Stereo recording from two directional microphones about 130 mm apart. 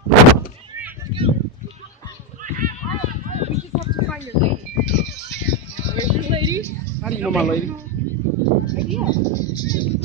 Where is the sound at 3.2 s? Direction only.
60° right (ahead or behind).